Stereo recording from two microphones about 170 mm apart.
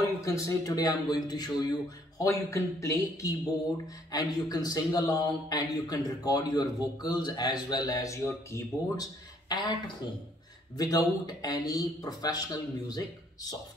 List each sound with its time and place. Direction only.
0.0 s a man's voice: 20° left (ahead or behind)
10.8 s a man's voice: 20° left (ahead or behind)